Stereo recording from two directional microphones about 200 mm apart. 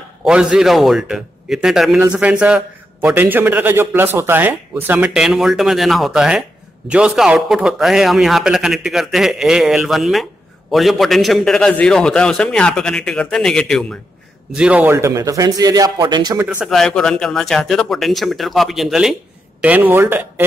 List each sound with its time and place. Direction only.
0.2 s a man's voice: 5° right (ahead or behind); by 16.4 s 20° right (ahead or behind)
16.4 s a man's voice: 5° right (ahead or behind)